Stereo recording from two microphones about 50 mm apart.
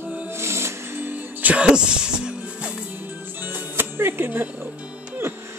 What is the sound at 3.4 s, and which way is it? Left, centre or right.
Music, right.